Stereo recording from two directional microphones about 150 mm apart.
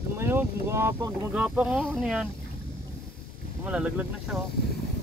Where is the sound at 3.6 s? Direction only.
5° right (ahead or behind).